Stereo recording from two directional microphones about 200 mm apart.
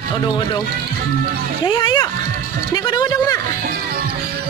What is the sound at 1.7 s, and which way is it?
Speech, 20° left (ahead or behind).